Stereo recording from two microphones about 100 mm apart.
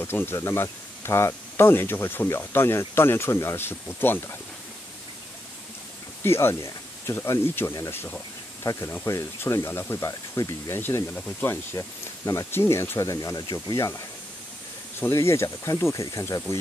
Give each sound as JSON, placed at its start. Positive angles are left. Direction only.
{"t": 0.0, "sound": "speech", "side_deg": 25}
{"t": 6.2, "sound": "speech", "side_deg": 25}